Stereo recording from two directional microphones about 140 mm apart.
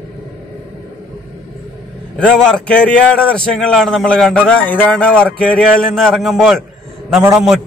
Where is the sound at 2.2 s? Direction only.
5° left (ahead or behind).